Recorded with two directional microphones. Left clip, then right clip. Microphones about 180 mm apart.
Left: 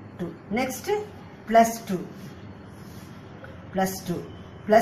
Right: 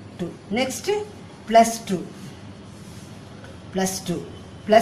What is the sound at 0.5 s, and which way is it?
Speech, centre (ahead or behind).